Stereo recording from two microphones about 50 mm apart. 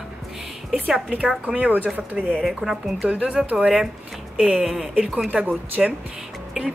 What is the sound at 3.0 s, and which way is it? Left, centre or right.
Speech, right.